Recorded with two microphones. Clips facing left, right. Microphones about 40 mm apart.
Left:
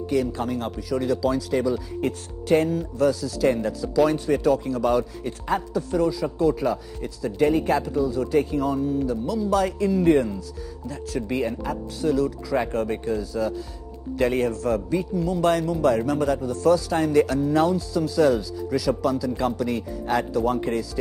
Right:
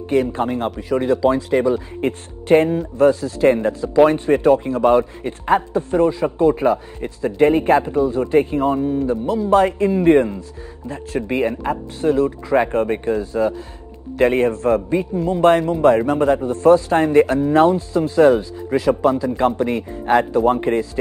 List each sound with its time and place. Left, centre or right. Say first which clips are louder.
0.1 s speech: right 6 dB; right